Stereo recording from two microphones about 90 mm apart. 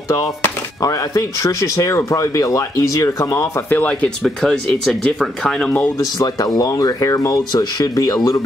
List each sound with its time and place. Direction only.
0.8 s speech: 35° left (ahead or behind)
3.7 s speech: 15° left (ahead or behind)
5.9 s speech: 45° left (ahead or behind)